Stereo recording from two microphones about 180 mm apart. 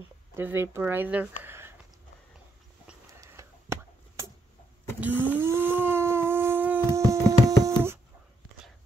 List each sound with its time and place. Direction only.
0.4 s speech: 10° right (ahead or behind)
3.2 s a sound: 15° right (ahead or behind)
7.1 s music: 20° right (ahead or behind)
7.6 s dog: 15° right (ahead or behind)